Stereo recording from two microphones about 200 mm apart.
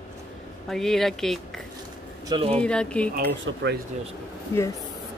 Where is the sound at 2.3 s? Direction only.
30° right (ahead or behind).